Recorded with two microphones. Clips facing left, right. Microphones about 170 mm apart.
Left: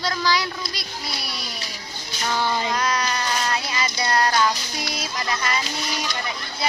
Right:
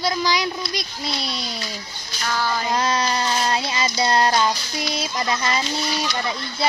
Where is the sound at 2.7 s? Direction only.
25° right (ahead or behind).